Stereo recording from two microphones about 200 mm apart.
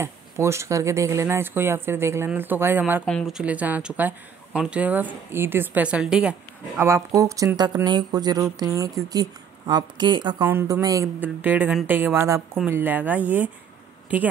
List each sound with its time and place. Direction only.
0.0 s speech: 15° right (ahead or behind)
3.1 s speech: centre (ahead or behind)
7.2 s speech: 15° right (ahead or behind)
10.4 s speech: 10° right (ahead or behind)